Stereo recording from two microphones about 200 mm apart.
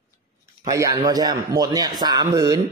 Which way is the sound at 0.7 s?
15° right (ahead or behind).